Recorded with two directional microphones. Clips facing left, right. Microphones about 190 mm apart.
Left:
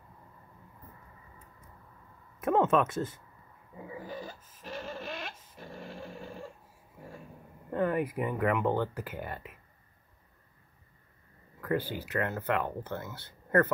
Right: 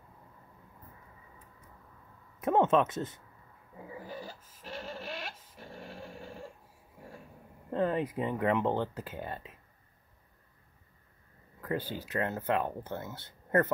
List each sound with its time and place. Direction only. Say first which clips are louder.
2.4 s speech: even; 20° right (ahead or behind)
4.8 s a sound: even; 10° right (ahead or behind)
7.7 s speech: left 1 dB; 25° right (ahead or behind)
11.6 s speech: left 3 dB; 20° right (ahead or behind)